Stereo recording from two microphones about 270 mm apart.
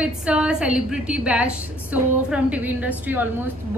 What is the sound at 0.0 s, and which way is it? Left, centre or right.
A woman's voice, centre.